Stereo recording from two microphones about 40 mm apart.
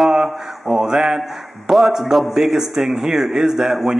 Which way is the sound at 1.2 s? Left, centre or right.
Centre.